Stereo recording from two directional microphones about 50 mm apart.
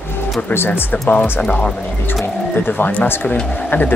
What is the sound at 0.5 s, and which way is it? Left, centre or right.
Speech, left.